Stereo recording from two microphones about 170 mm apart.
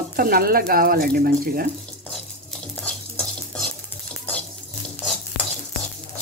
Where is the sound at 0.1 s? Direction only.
60° right (ahead or behind).